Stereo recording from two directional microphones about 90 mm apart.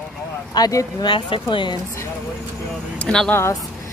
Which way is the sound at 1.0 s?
65° left (ahead or behind).